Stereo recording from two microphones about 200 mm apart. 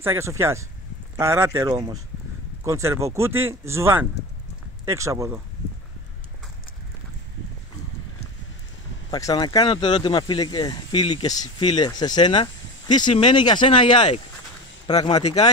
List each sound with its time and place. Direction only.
0.0 s speech: 15° right (ahead or behind)
9.1 s speech: 20° left (ahead or behind)